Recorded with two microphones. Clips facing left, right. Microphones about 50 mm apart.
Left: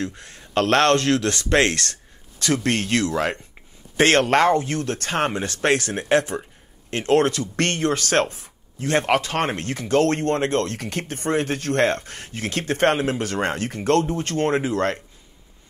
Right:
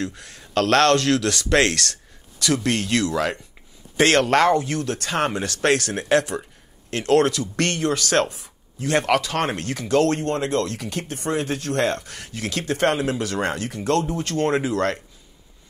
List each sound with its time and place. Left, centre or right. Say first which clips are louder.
0.0 s speech: even; left